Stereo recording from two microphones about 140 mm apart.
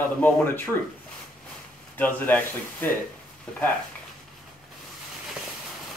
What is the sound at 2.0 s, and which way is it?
Speech, 10° left (ahead or behind).